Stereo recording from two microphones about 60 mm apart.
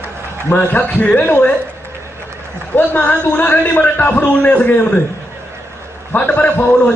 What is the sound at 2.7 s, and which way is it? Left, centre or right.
A man's voice, left.